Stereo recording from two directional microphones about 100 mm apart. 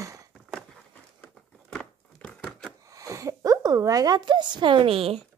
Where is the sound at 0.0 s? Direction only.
35° right (ahead or behind).